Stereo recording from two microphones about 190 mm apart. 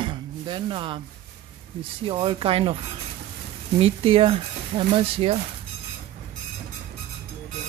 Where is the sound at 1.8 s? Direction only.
25° right (ahead or behind).